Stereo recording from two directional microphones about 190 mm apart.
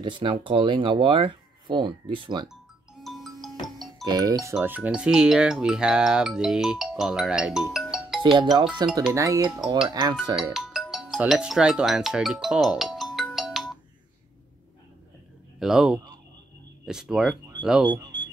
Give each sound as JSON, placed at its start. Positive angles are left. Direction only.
{"t": 0.0, "sound": "speech", "side_deg": -25}
{"t": 3.0, "sound": "music", "side_deg": 0}
{"t": 4.0, "sound": "speech", "side_deg": -20}
{"t": 4.6, "sound": "speech", "side_deg": -10}
{"t": 7.7, "sound": "music", "side_deg": 0}
{"t": 8.4, "sound": "speech", "side_deg": -25}
{"t": 10.5, "sound": "music", "side_deg": 0}
{"t": 15.6, "sound": "speech", "side_deg": -5}
{"t": 17.8, "sound": "a sound", "side_deg": -20}